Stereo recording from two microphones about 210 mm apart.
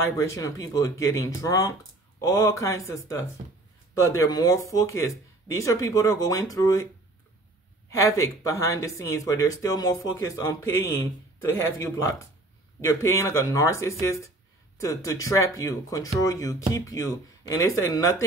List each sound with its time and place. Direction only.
0.0 s speech: 15° left (ahead or behind)
8.2 s speech: 15° left (ahead or behind)